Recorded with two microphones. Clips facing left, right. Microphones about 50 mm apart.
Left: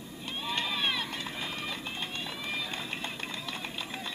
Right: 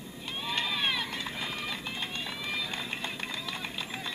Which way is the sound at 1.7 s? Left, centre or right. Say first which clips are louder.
Right 1 dB; centre.